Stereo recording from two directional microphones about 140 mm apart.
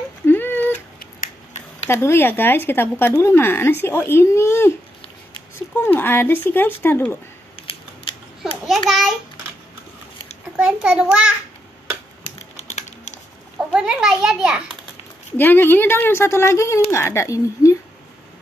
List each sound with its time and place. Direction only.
0.3 s a sound: 15° left (ahead or behind)
1.9 s speech: 15° left (ahead or behind)
5.8 s speech: 15° left (ahead or behind)
7.6 s scissors: 40° left (ahead or behind)
8.6 s a child's voice: centre (ahead or behind)
10.5 s a child's voice: 5° right (ahead or behind)
12.4 s typing: 55° left (ahead or behind)
13.7 s a child's voice: 5° right (ahead or behind)
15.3 s speech: 15° left (ahead or behind)